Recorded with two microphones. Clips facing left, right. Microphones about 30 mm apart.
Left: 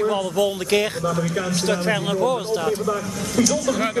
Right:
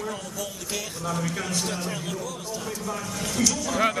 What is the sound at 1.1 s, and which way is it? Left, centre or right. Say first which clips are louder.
Speech: left 6 dB; centre.